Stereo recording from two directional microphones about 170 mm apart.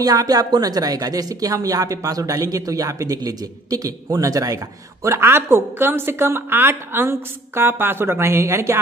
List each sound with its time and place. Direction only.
0.0 s a woman's voice: 20° right (ahead or behind)